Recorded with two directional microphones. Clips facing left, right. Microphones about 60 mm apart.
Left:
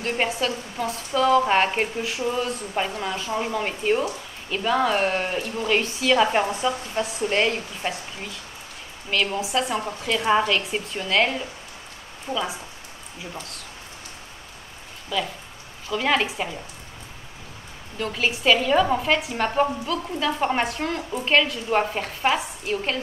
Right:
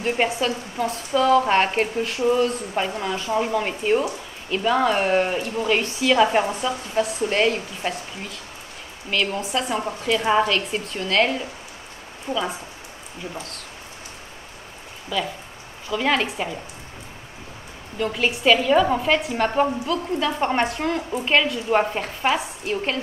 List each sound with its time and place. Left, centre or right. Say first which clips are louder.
0.0 s speech: right 2 dB; centre
15.1 s speech: right 1 dB; centre
17.9 s speech: right 2 dB; centre